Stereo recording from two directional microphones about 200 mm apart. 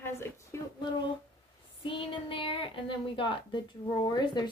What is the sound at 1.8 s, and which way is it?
A woman's voice, 25° left (ahead or behind).